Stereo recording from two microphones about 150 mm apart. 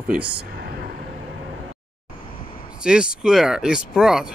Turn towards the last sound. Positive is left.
turn(degrees=-5)  # may be behind; listen again after turning